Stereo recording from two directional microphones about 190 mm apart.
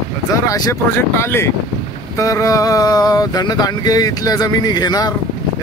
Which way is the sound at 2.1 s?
15° left (ahead or behind).